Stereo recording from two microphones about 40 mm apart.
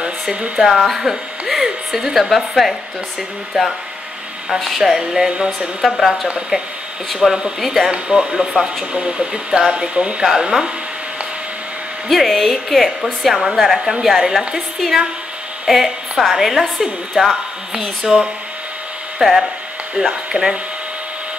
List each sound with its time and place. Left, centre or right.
0.0 s speech: right
0.7 s a woman's voice: centre
4.6 s a woman's voice: centre
4.8 s a woman's voice: centre
5.9 s a woman's voice: centre
6.5 s a woman's voice: centre
7.2 s a woman's voice: centre
7.9 s a woman's voice: centre
10.2 s a woman's voice: centre
12.1 s a woman's voice: centre
19.2 s a woman's voice: centre
20.2 s speech: right